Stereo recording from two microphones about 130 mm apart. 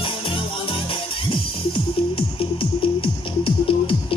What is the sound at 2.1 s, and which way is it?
Music, 45° left (ahead or behind).